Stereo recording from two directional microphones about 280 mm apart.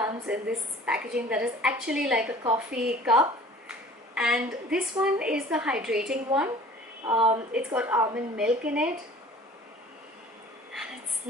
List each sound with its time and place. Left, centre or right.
0.0 s a woman's voice: centre
7.1 s speech: right
7.3 s a woman's voice: centre